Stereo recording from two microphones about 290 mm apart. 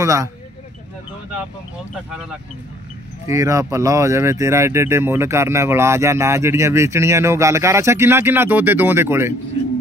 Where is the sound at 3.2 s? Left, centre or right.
Centre.